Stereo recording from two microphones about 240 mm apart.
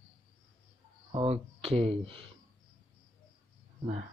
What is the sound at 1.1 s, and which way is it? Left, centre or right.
Speech, right.